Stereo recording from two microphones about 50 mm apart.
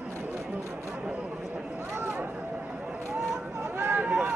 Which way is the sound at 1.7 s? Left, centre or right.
Right.